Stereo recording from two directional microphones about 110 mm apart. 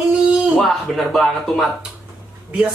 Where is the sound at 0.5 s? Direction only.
Centre (ahead or behind).